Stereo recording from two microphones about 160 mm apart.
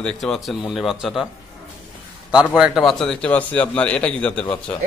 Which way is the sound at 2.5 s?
5° right (ahead or behind).